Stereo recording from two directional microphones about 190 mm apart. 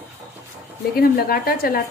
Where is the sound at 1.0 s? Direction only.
50° left (ahead or behind).